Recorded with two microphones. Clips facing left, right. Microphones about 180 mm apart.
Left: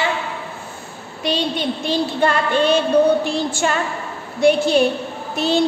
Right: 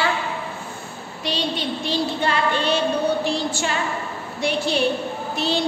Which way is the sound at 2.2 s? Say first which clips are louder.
Left 7 dB; 50° left (ahead or behind).